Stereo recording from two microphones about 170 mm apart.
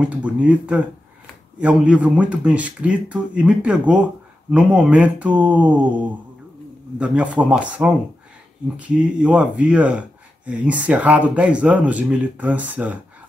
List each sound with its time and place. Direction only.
0.0 s speech: 10° right (ahead or behind)